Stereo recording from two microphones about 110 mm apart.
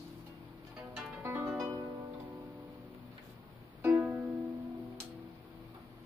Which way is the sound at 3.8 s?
20° right (ahead or behind).